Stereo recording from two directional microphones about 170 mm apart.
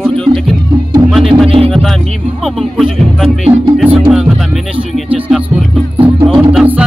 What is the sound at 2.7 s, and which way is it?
Music, centre (ahead or behind).